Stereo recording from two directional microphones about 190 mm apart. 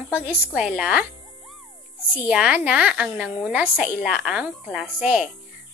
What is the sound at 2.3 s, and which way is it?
A woman's voice, 5° right (ahead or behind).